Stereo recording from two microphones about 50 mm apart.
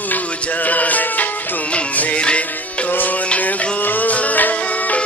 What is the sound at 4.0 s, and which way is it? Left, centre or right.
Music, left.